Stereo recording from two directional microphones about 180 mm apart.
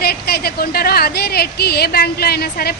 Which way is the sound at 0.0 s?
60° left (ahead or behind).